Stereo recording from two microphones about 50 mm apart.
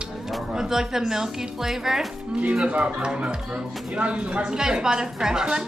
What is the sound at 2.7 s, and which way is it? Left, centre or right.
Speech, centre.